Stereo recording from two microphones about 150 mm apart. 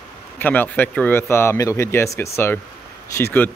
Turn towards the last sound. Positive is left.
turn(degrees=15)  # may be behind; listen again after turning